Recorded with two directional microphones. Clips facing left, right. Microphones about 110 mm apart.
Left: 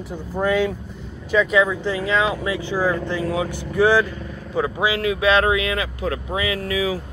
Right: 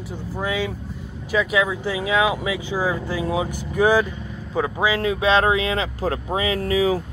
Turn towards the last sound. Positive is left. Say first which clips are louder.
# right 3 dB
turn(degrees=-35)  # may be behind; listen again after turning